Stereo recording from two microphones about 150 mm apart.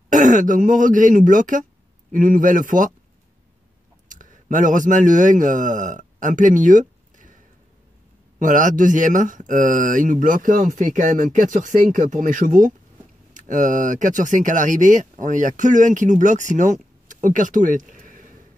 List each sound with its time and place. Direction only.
0.1 s speech: 60° right (ahead or behind)
4.1 s a man's voice: 60° right (ahead or behind)
8.4 s speech: 60° right (ahead or behind)